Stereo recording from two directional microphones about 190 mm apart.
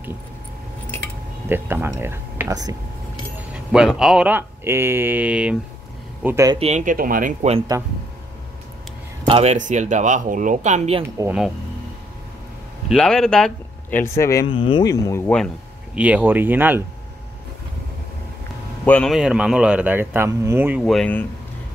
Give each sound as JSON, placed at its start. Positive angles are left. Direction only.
{"t": 1.5, "sound": "speech", "side_deg": -10}
{"t": 3.3, "sound": "speech", "side_deg": -5}
{"t": 6.2, "sound": "speech", "side_deg": -15}
{"t": 6.6, "sound": "speech", "side_deg": -40}
{"t": 7.5, "sound": "speech", "side_deg": -20}
{"t": 9.3, "sound": "speech", "side_deg": -35}
{"t": 12.8, "sound": "speech", "side_deg": 5}
{"t": 14.5, "sound": "speech", "side_deg": 25}
{"t": 16.0, "sound": "speech", "side_deg": -10}
{"t": 18.9, "sound": "speech", "side_deg": 5}
{"t": 20.8, "sound": "speech", "side_deg": 5}